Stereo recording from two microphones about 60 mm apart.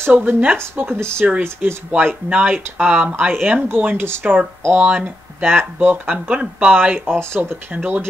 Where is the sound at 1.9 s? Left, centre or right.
Right.